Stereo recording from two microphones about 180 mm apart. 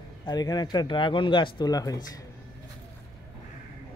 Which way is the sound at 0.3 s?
20° left (ahead or behind).